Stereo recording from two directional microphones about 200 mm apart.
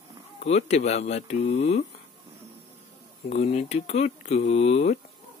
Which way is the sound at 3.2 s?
35° left (ahead or behind).